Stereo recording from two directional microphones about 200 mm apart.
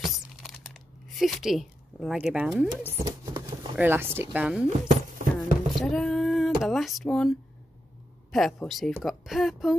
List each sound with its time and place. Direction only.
0.0 s crumpling: centre (ahead or behind)
2.8 s speech: 10° right (ahead or behind)
3.3 s a sound: 20° right (ahead or behind)
3.7 s speech: 10° right (ahead or behind)
5.4 s a sound: centre (ahead or behind)
6.6 s a woman's voice: centre (ahead or behind)